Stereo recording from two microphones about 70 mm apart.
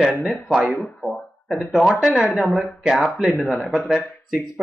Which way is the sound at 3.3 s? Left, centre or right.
Centre.